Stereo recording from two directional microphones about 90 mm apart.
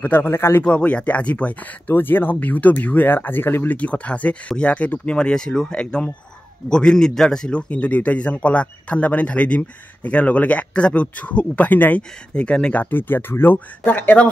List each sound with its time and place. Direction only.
0.0 s speech: 25° left (ahead or behind)
0.7 s a man's voice: 10° left (ahead or behind)
12.9 s speech: 25° left (ahead or behind)